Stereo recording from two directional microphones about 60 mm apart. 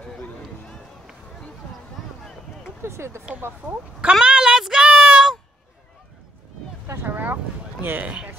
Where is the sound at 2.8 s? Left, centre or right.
Right.